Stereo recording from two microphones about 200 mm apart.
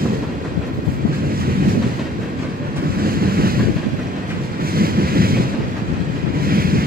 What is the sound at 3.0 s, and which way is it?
Waves, 50° right (ahead or behind).